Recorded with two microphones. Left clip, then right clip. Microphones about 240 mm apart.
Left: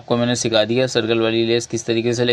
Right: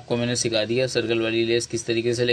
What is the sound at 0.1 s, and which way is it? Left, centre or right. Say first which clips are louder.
Speech: left 6 dB; centre.